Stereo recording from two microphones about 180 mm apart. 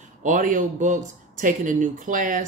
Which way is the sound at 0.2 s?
45° right (ahead or behind).